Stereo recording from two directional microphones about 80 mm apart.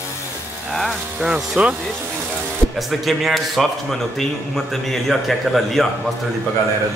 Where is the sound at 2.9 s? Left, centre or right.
Centre.